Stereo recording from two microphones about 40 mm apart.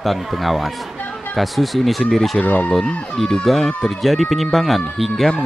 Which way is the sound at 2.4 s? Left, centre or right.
Left.